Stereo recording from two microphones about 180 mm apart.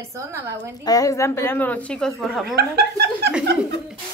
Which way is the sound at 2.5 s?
65° right (ahead or behind).